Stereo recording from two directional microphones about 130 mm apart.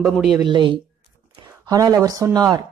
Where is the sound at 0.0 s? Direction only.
Centre (ahead or behind).